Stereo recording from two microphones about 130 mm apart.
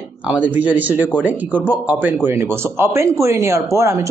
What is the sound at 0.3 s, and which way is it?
A man's voice, 10° right (ahead or behind).